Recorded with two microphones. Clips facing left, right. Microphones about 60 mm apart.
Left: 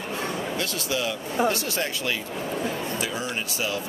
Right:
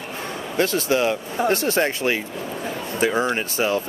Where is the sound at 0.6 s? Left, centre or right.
Right.